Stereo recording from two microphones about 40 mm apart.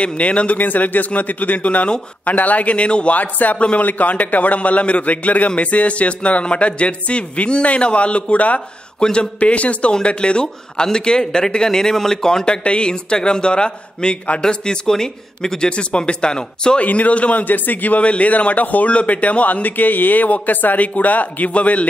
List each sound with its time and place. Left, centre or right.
0.0 s speech: left
0.6 s a man's voice: left
3.2 s a man's voice: left
3.5 s speech: left
3.8 s speech: left
9.0 s speech: left
9.4 s speech: left; by 15.7 s centre
15.7 s speech: left
16.8 s speech: left